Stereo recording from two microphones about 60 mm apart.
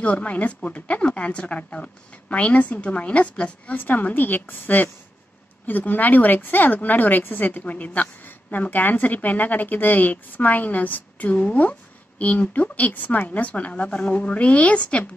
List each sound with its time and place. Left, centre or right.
0.0 s a woman's voice: left